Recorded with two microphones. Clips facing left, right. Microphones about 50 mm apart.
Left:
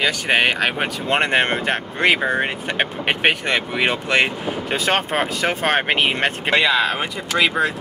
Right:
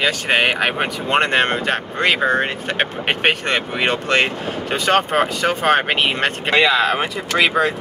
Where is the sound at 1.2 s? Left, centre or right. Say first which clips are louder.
Left 1 dB; centre.